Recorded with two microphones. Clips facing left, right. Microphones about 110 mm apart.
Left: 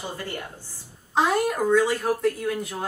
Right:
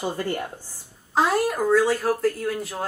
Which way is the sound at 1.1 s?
Centre (ahead or behind).